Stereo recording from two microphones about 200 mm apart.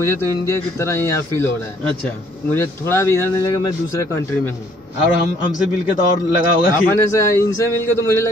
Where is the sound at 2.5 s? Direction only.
10° left (ahead or behind).